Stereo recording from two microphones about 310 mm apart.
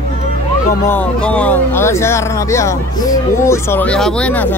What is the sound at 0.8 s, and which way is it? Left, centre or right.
Speech, centre.